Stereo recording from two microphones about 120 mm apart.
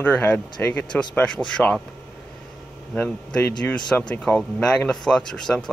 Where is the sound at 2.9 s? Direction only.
10° left (ahead or behind).